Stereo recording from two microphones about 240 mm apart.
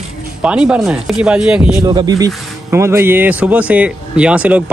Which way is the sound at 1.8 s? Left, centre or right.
Centre.